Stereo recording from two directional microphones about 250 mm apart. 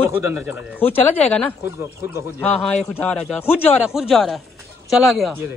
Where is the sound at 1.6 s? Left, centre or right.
Centre.